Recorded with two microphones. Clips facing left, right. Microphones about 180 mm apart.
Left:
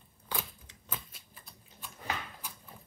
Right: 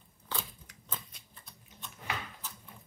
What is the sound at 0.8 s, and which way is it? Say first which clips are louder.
Shuffling cards: left 1 dB; 5° left (ahead or behind).